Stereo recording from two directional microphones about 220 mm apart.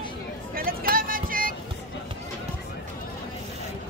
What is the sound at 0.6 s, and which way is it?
Vehicle, 40° right (ahead or behind).